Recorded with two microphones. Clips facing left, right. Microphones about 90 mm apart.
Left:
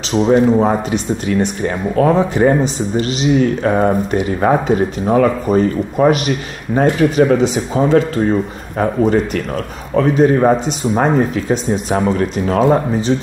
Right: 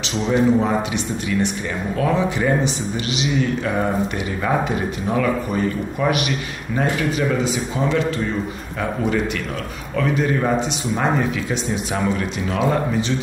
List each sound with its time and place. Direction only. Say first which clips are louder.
0.1 s a man's voice: left 6 dB; 40° left (ahead or behind)